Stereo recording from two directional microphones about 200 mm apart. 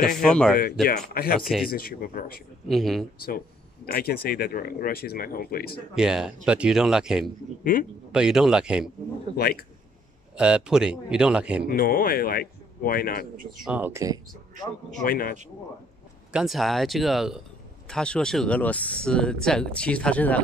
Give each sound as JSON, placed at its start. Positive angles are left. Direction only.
{"t": 0.0, "sound": "speech", "side_deg": 40}
{"t": 0.3, "sound": "speech", "side_deg": 5}
{"t": 0.8, "sound": "speech", "side_deg": 50}
{"t": 2.7, "sound": "speech", "side_deg": 0}
{"t": 3.3, "sound": "speech", "side_deg": 50}
{"t": 5.9, "sound": "speech", "side_deg": -5}
{"t": 9.4, "sound": "speech", "side_deg": 50}
{"t": 10.3, "sound": "speech", "side_deg": -5}
{"t": 11.7, "sound": "speech", "side_deg": 45}
{"t": 13.7, "sound": "speech", "side_deg": -10}
{"t": 15.0, "sound": "speech", "side_deg": 45}
{"t": 16.3, "sound": "speech", "side_deg": -5}